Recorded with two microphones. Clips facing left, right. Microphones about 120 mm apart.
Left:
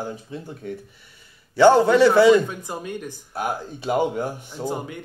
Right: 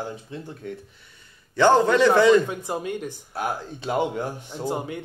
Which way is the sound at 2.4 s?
20° right (ahead or behind).